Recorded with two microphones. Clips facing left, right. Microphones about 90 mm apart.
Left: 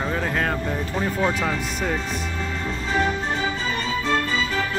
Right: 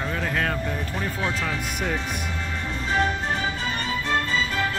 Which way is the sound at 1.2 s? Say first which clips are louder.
Left 5 dB; 10° left (ahead or behind).